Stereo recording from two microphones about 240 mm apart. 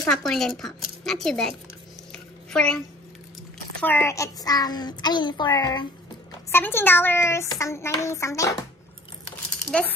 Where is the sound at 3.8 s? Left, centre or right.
Centre.